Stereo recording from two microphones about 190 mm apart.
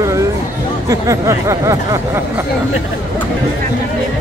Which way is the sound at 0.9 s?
15° right (ahead or behind).